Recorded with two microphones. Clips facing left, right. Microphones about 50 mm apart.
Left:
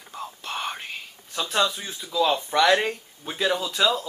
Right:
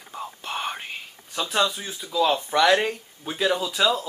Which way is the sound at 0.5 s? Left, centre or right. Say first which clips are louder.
Right 1 dB; centre.